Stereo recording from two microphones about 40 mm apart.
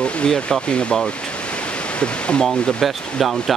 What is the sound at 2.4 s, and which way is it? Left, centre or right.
Speech, centre.